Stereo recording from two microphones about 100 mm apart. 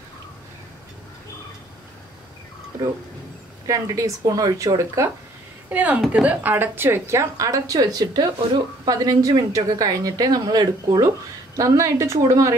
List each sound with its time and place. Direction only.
3.6 s speech: 35° right (ahead or behind)
5.7 s a woman's voice: 15° right (ahead or behind); by 11.1 s 40° right (ahead or behind)
11.5 s speech: 30° right (ahead or behind)